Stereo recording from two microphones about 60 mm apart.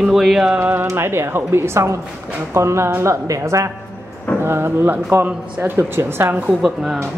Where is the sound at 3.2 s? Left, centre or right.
Right.